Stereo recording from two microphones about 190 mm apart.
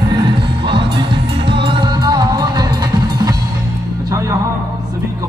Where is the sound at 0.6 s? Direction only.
25° right (ahead or behind).